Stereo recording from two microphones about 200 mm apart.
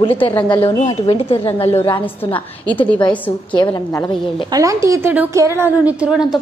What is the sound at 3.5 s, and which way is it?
Speech, 20° left (ahead or behind).